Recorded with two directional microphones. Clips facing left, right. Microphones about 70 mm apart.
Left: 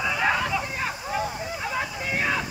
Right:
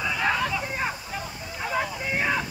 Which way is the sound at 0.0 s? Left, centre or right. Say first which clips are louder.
Left 1 dB; centre.